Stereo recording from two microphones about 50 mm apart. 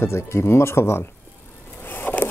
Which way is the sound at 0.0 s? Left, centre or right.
Left.